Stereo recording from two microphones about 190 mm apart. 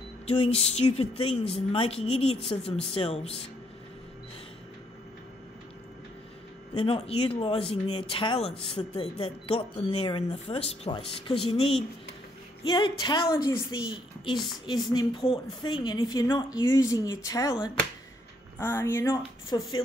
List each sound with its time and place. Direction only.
0.3 s speech: 30° left (ahead or behind)
6.8 s a woman's voice: 30° left (ahead or behind)